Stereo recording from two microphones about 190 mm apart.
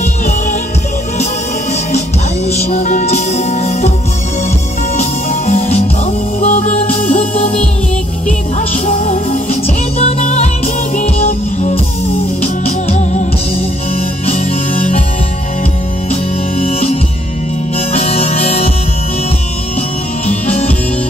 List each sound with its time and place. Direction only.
1.9 s music: 35° left (ahead or behind)
4.9 s music: 40° left (ahead or behind)
16.1 s music: 35° left (ahead or behind)
20.2 s music: 35° left (ahead or behind)